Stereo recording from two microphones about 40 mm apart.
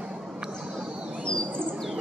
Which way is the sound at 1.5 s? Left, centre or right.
Right.